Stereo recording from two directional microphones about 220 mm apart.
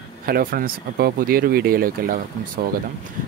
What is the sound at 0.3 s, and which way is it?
Speech, 40° right (ahead or behind).